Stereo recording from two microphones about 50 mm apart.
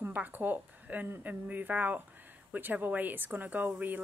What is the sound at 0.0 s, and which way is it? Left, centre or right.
A woman's voice, right.